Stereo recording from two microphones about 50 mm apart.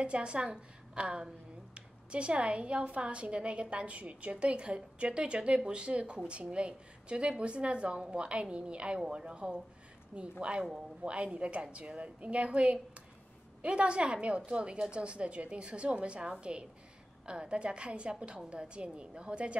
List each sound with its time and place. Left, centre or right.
0.0 s a woman's voice: right